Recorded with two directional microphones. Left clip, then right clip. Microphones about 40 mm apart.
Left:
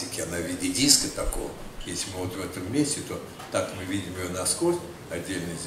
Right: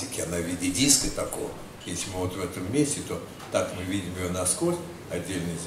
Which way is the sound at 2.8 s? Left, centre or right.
Left.